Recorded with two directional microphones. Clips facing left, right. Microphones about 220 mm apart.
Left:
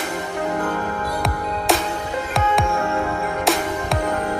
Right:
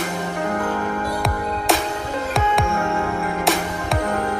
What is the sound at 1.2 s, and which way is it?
Music, centre (ahead or behind).